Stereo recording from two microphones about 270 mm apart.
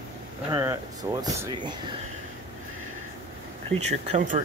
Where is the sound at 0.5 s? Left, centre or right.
Centre.